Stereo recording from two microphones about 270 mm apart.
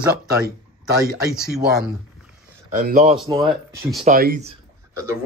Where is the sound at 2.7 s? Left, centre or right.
Right.